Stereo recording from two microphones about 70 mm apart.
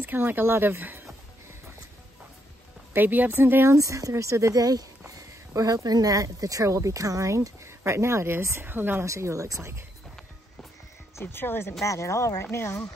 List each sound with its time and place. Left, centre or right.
0.0 s speech: right
2.9 s speech: right
3.7 s speech: right
8.6 s speech: right
9.0 s speech: right
11.1 s speech: left
11.8 s speech: left